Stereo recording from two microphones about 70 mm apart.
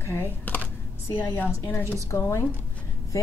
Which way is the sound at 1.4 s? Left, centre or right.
Left.